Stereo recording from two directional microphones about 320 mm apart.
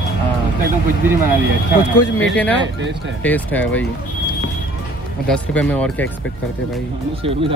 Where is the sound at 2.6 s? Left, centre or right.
Right.